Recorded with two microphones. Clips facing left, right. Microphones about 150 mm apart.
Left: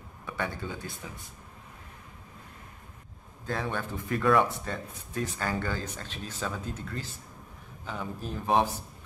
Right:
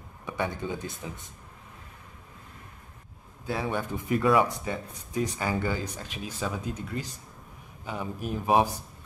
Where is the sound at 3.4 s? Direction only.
10° right (ahead or behind).